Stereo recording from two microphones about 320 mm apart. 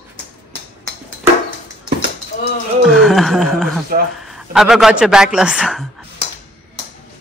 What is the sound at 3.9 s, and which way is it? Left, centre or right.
Speech, right.